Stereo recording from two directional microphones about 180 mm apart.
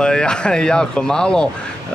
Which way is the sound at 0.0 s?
5° left (ahead or behind).